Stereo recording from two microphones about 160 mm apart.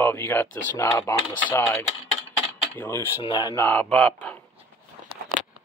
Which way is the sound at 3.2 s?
30° left (ahead or behind).